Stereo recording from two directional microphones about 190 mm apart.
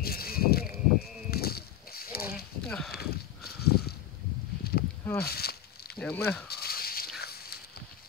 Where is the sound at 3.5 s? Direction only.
55° left (ahead or behind).